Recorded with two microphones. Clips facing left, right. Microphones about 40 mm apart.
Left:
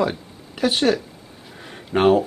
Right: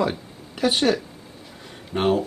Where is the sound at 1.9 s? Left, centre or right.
Left.